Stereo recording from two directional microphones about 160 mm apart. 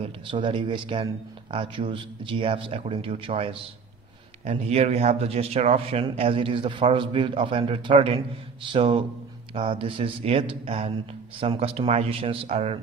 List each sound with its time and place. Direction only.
0.0 s speech: 30° right (ahead or behind)